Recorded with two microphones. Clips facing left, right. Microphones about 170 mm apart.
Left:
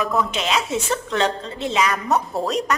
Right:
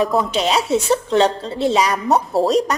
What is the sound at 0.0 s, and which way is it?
A woman's voice, 30° right (ahead or behind).